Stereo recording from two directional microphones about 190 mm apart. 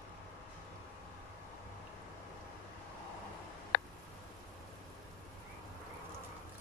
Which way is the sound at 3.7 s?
55° left (ahead or behind).